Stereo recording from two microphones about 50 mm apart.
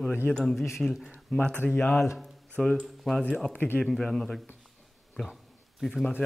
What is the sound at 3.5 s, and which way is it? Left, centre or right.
Speech, left.